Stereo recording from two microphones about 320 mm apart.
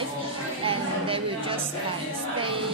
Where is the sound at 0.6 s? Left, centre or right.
Centre.